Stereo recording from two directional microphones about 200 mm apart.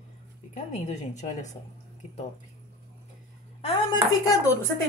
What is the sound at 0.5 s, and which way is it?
Speech, 35° left (ahead or behind).